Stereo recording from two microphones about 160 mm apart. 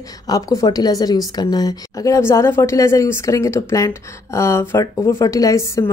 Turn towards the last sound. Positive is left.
turn(degrees=20)  # may be behind; listen again after turning